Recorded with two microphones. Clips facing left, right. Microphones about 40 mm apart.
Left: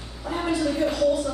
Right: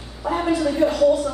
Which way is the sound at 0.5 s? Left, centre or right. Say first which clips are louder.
Right 3 dB; centre.